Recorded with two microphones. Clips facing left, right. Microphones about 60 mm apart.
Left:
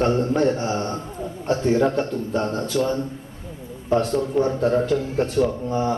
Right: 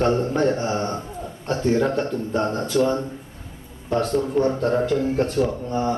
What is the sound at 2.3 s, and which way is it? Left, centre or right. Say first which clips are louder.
Speech: right 1 dB; right.